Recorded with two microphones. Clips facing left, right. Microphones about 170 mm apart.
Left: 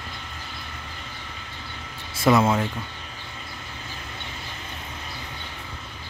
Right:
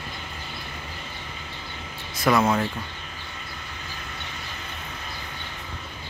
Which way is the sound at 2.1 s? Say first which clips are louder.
Left 2 dB; 25° left (ahead or behind).